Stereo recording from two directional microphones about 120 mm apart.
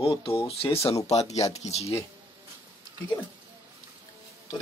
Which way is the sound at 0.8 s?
60° left (ahead or behind).